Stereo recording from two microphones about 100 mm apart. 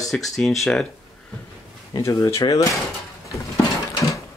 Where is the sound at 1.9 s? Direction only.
35° left (ahead or behind).